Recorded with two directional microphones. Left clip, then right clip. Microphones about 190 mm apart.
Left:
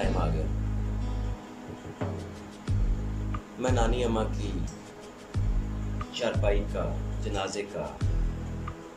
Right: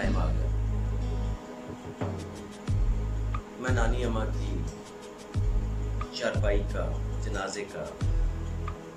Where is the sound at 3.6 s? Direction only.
15° left (ahead or behind).